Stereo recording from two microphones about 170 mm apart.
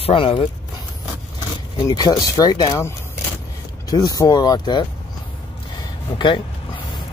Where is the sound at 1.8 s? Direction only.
25° left (ahead or behind).